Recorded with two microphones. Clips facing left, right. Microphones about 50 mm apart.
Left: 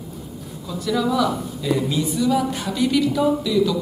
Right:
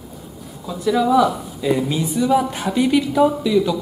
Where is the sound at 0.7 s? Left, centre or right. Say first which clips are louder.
Right 4 dB; centre.